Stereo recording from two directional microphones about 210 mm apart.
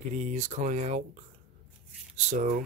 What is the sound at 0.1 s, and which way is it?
Speech, 35° right (ahead or behind).